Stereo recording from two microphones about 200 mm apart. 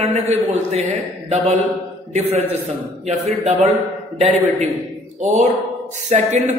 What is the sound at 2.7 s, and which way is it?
A man's voice, 35° right (ahead or behind).